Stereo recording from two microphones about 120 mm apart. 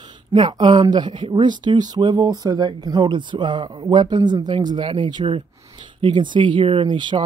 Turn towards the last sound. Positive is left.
turn(degrees=-40)  # may be behind; listen again after turning